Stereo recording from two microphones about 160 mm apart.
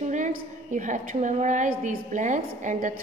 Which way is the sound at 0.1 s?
50° right (ahead or behind).